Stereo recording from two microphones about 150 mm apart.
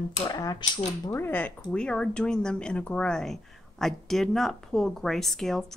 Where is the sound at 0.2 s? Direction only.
25° left (ahead or behind).